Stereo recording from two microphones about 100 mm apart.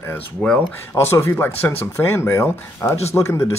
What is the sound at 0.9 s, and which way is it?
Speech, 25° left (ahead or behind).